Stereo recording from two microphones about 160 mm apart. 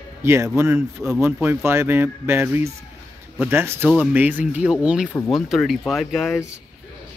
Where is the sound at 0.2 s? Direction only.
15° right (ahead or behind).